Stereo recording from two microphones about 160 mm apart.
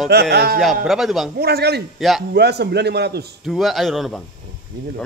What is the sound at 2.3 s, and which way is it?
A man's voice, 90° right.